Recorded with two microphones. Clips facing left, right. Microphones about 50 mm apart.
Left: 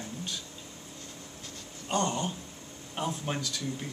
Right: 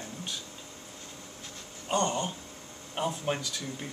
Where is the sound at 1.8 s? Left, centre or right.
Centre.